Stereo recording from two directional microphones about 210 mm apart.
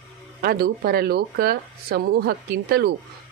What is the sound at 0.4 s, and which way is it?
Speech, 45° right (ahead or behind).